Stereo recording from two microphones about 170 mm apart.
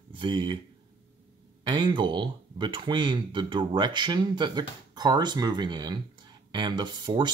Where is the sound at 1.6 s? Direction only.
25° right (ahead or behind).